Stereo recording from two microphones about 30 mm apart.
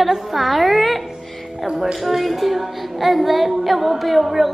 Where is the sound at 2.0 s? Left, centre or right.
Centre.